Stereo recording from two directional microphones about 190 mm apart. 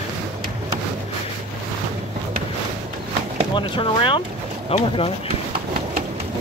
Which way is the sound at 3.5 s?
25° left (ahead or behind).